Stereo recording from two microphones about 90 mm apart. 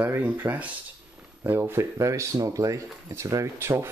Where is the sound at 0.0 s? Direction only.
25° right (ahead or behind).